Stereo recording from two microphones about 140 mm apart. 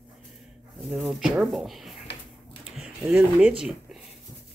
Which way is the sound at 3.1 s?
10° right (ahead or behind).